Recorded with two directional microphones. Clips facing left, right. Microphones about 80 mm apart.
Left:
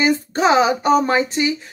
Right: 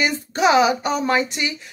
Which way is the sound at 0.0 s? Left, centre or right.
Left.